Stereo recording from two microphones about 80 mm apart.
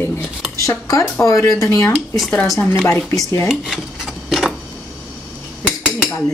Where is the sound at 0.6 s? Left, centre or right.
Left.